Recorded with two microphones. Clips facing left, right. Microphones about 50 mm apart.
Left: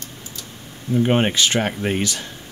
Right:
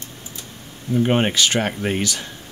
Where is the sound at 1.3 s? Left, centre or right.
Centre.